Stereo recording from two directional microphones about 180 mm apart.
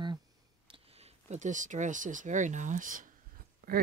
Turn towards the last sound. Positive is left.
turn(degrees=-55)  # may be behind; listen again after turning